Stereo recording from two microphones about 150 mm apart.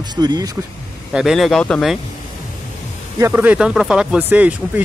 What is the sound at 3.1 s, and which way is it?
Speech, 15° right (ahead or behind).